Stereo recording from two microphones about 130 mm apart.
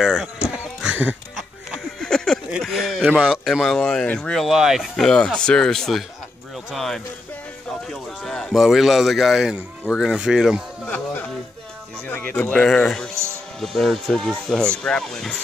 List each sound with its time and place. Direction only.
0.0 s speech: centre (ahead or behind)
0.8 s music: 15° right (ahead or behind)
1.3 s a sound: centre (ahead or behind)
3.3 s a man's voice: centre (ahead or behind)
12.1 s speech: 15° left (ahead or behind)
13.1 s music: 20° right (ahead or behind)
13.6 s speech: centre (ahead or behind)